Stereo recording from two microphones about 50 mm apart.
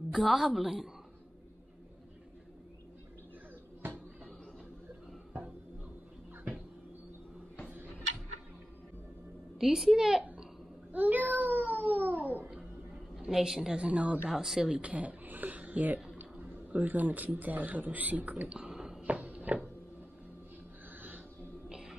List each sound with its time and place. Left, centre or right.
0.2 s a woman's voice: centre
9.6 s a child's voice: centre
10.9 s cat: right
13.1 s a woman's voice: centre
13.7 s speech: right
14.3 s a child's voice: centre
14.8 s a man's voice: right
18.5 s a sound: centre
19.0 s a sound: right
21.6 s music: centre